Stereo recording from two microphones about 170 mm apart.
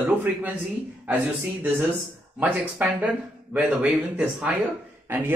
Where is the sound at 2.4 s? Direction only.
10° right (ahead or behind).